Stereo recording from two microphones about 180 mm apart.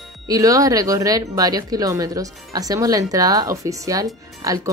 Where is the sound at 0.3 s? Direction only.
20° right (ahead or behind).